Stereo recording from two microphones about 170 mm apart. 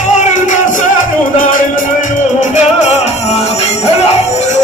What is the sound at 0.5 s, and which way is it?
Music, 50° left (ahead or behind).